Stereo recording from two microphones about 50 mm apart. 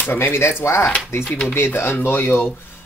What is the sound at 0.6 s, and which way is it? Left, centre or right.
Speech, left.